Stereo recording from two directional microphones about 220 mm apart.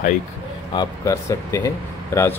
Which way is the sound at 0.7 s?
15° left (ahead or behind).